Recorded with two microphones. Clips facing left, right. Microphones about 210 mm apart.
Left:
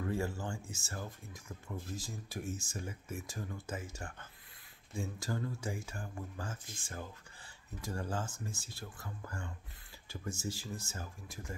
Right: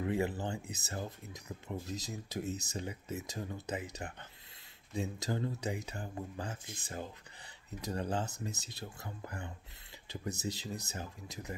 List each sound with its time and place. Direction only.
0.0 s speech: 20° right (ahead or behind)